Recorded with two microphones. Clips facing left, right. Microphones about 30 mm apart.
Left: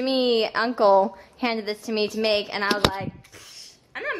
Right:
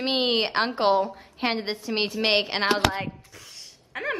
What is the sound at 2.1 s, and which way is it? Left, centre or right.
Speech, right.